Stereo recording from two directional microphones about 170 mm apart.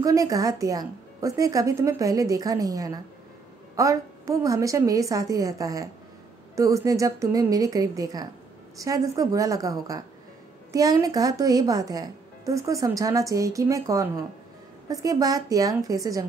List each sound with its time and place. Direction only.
0.0 s speech: 20° right (ahead or behind)